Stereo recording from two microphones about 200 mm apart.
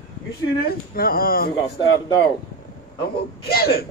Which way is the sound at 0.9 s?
45° left (ahead or behind).